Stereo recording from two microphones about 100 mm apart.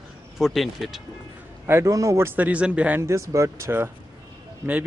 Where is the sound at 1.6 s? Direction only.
30° right (ahead or behind).